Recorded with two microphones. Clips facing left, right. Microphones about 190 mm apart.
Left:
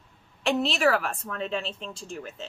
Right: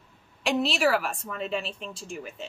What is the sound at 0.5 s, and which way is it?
Speech, centre (ahead or behind).